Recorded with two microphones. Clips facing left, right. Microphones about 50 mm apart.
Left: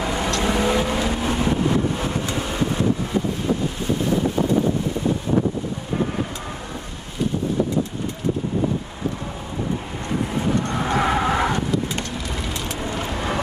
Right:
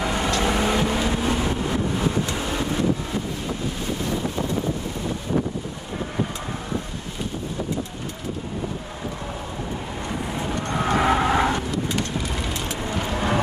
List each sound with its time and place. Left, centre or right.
0.0 s vehicle: centre
5.4 s a sound: centre
10.1 s vehicle: centre
12.8 s vehicle: centre